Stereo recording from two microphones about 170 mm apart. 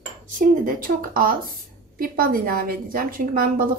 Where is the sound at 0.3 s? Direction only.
55° right (ahead or behind).